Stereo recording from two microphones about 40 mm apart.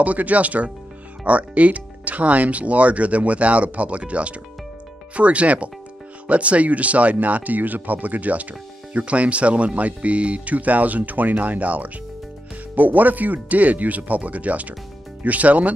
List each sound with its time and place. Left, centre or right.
0.0 s speech: right